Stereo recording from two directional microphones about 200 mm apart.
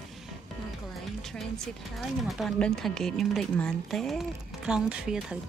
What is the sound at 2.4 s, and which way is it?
A woman's voice, 5° left (ahead or behind).